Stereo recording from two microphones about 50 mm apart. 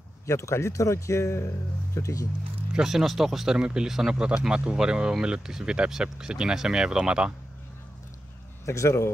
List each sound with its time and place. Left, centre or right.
0.3 s speech: left
2.0 s speech: left
2.7 s speech: centre
3.5 s speech: centre
8.6 s speech: left